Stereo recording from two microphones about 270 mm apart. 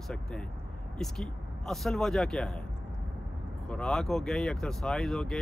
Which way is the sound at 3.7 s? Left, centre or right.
Centre.